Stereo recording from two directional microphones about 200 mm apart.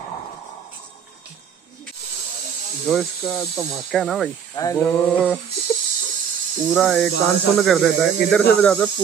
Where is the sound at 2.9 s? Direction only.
Centre (ahead or behind).